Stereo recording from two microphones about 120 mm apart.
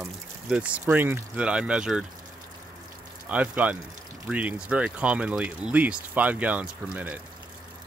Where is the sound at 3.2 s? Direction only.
10° right (ahead or behind).